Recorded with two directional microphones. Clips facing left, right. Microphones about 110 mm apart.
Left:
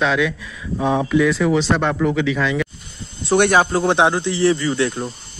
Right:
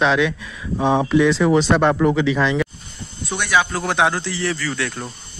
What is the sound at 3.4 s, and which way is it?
Speech, 45° left (ahead or behind).